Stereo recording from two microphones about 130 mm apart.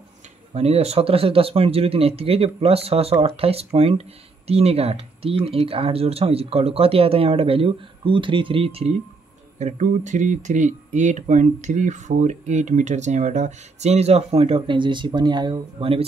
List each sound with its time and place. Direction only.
0.6 s speech: 50° right (ahead or behind)
9.6 s speech: 65° right (ahead or behind); by 16.0 s 40° right (ahead or behind)